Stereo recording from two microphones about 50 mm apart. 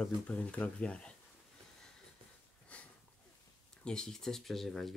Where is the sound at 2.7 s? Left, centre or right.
Left.